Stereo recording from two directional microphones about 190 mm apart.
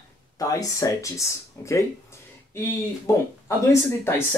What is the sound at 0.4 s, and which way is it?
Speech, 15° left (ahead or behind).